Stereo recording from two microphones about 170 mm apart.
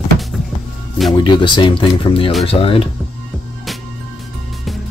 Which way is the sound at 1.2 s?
30° left (ahead or behind).